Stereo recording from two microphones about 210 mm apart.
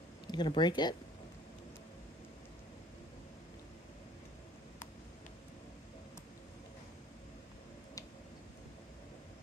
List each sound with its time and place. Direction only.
0.3 s speech: 20° left (ahead or behind)